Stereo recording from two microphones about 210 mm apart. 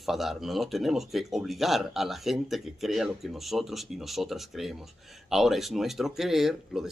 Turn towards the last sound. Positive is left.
turn(degrees=0)  # may be behind; listen again after turning